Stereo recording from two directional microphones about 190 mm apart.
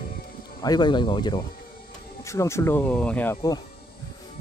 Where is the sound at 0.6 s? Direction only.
20° left (ahead or behind).